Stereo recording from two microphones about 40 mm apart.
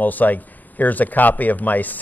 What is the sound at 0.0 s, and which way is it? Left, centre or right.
Speech, left.